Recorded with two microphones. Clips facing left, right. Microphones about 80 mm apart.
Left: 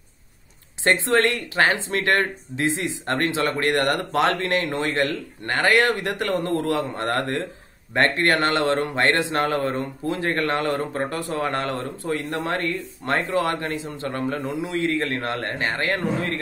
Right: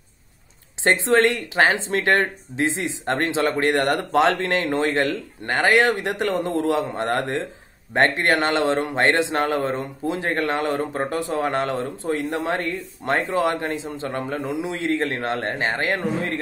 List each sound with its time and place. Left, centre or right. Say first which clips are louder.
0.8 s speech: right 2 dB; right